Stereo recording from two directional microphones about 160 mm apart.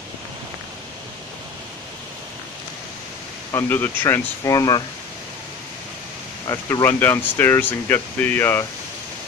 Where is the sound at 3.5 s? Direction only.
15° left (ahead or behind).